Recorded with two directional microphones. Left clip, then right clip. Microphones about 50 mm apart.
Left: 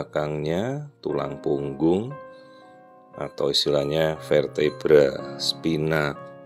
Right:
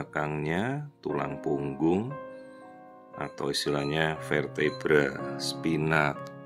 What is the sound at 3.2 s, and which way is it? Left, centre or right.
Speech, left.